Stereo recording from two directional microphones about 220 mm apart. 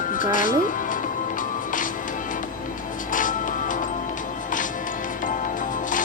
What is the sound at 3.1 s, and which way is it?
Music, 35° left (ahead or behind).